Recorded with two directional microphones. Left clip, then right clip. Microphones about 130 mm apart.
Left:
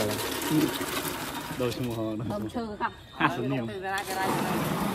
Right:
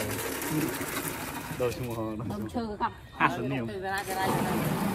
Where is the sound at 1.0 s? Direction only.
25° left (ahead or behind).